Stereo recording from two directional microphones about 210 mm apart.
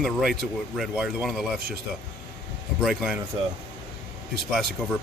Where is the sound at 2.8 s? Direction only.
5° right (ahead or behind).